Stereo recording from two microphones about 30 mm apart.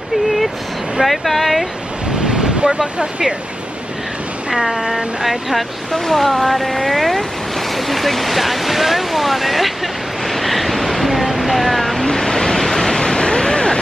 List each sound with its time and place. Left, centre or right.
1.0 s speech: centre
2.2 s waves: right
3.0 s speech: centre
4.5 s speech: centre
5.9 s speech: centre
10.2 s vehicle: centre
12.1 s vehicle: centre
12.9 s waves: left